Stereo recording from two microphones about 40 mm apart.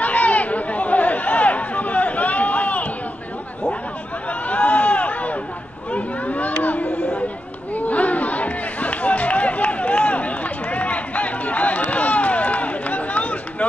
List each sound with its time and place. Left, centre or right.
0.0 s chatter: left
4.3 s a sound: left
7.7 s run: left